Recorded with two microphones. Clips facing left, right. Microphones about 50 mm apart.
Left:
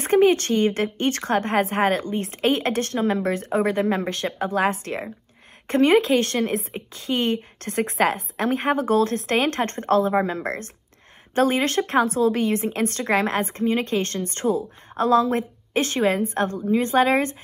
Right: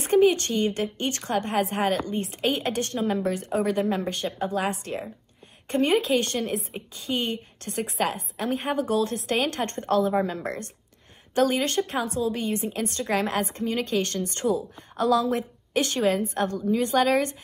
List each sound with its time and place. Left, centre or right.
0.0 s a woman's voice: left